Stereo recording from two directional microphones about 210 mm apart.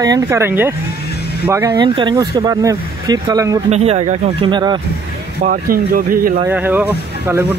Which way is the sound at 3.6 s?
30° right (ahead or behind).